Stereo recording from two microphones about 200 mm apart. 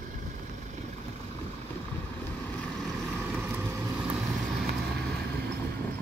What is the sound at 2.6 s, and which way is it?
Vehicle, centre (ahead or behind).